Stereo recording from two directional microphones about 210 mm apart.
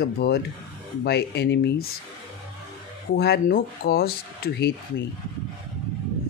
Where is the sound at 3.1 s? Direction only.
50° left (ahead or behind).